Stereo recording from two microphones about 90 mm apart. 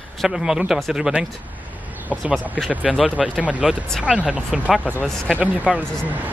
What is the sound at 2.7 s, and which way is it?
Speech, 15° right (ahead or behind).